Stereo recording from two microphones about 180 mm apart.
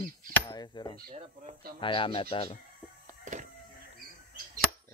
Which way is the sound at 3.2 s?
40° right (ahead or behind).